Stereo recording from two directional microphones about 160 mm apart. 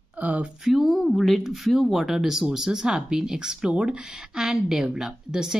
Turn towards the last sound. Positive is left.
turn(degrees=-5)  # may be behind; listen again after turning